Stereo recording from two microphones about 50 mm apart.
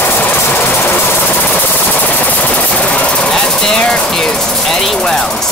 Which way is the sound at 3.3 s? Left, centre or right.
Centre.